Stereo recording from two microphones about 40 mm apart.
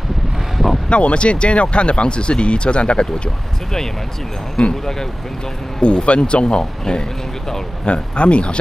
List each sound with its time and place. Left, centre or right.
0.8 s speech: left
4.6 s speech: centre
5.8 s speech: left